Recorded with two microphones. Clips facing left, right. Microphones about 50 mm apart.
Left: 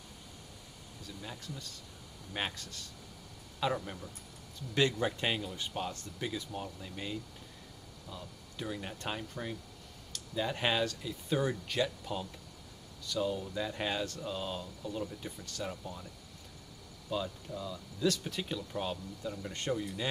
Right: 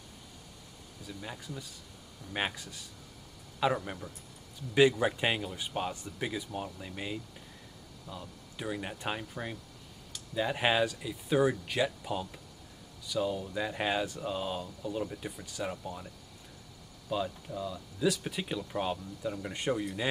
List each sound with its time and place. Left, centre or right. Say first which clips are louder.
1.0 s speech: right 3 dB; centre
17.1 s speech: right 3 dB; centre